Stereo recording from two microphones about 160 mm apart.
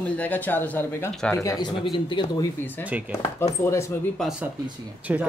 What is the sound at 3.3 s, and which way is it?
Speech, 15° left (ahead or behind).